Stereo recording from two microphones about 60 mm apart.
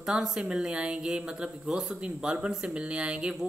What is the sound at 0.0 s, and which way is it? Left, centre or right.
A woman's voice, centre.